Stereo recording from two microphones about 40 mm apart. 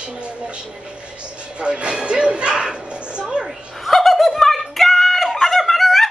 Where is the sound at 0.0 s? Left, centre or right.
Right.